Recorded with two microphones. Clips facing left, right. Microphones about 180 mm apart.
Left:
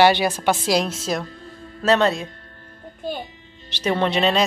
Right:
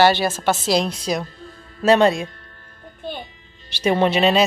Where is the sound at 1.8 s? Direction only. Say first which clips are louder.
Right 3 dB; 15° right (ahead or behind).